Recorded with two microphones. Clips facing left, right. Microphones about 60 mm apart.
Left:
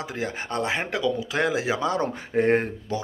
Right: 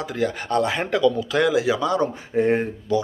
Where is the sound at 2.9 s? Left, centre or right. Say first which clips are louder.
Right 8 dB; left.